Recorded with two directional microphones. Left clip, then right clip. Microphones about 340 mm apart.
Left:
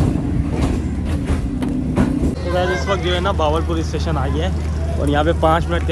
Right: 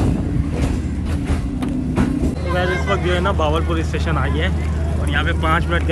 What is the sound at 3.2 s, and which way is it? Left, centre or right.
Speech, centre.